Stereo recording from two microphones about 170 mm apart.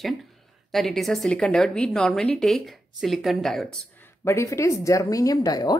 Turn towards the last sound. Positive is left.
turn(degrees=20)  # may be behind; listen again after turning